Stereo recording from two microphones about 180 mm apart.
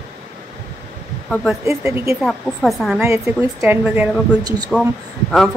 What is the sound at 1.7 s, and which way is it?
Speech, 15° right (ahead or behind).